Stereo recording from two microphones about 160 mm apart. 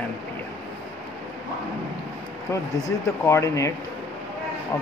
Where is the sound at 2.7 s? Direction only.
20° left (ahead or behind).